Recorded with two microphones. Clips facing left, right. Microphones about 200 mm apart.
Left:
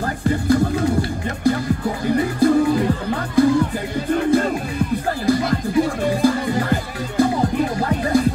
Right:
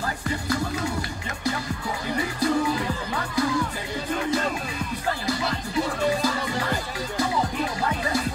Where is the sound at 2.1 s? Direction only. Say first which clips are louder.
Left 8 dB; 50° left (ahead or behind).